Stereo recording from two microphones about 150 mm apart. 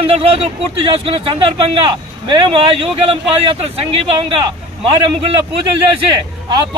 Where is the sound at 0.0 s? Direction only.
40° right (ahead or behind).